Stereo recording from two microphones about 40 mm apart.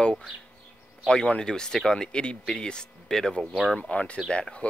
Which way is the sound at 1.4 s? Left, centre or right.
Centre.